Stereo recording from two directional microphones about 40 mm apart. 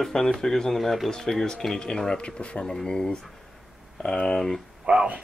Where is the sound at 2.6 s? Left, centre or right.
Centre.